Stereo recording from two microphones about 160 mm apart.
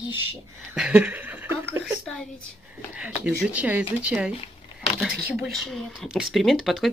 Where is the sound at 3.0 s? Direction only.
5° right (ahead or behind).